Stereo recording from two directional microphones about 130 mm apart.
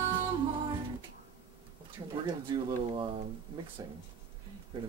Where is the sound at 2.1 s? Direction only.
30° right (ahead or behind).